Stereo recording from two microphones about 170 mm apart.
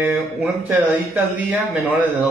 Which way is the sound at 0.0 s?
5° right (ahead or behind).